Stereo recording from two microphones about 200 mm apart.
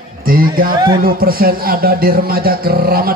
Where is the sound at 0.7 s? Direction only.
20° right (ahead or behind).